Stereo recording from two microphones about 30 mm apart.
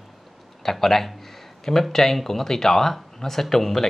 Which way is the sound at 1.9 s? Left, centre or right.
Centre.